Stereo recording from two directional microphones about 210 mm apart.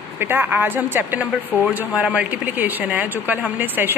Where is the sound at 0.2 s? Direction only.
10° right (ahead or behind).